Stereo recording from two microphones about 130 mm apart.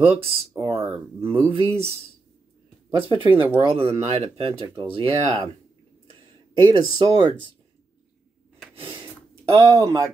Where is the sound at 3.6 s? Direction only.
45° right (ahead or behind).